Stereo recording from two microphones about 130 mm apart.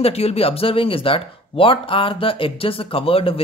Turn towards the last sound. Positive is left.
turn(degrees=45)  # may be behind; listen again after turning